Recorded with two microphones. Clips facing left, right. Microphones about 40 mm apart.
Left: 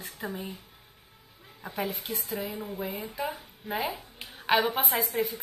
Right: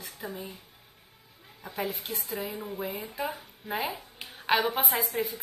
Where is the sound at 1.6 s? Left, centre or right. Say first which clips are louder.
Left 1 dB; centre.